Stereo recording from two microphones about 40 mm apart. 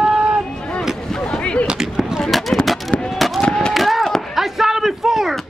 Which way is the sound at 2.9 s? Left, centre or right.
Left.